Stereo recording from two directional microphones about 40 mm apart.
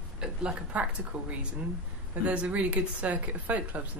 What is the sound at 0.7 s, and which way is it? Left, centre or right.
Speech, right.